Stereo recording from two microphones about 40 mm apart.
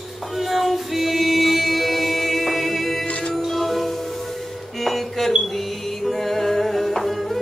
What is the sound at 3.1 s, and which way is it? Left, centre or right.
Music, left.